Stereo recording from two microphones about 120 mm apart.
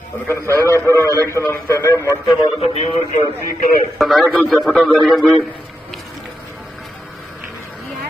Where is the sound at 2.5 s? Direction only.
55° left (ahead or behind).